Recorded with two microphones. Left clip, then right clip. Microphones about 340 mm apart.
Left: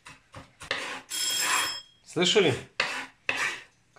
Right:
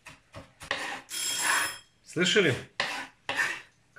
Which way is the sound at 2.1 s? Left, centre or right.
Centre.